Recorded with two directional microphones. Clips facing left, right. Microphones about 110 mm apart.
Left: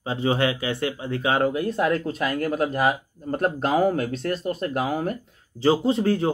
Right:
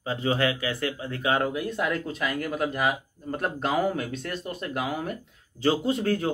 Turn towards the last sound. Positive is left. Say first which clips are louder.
# left 4 dB
turn(degrees=25)  # may be behind; listen again after turning